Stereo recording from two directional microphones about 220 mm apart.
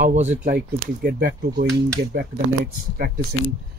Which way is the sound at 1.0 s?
40° right (ahead or behind).